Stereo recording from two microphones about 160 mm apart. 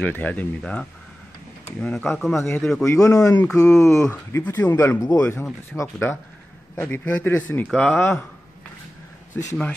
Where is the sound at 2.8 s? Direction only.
20° left (ahead or behind).